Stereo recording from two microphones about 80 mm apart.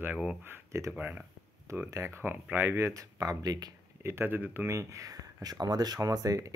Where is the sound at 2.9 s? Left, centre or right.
Right.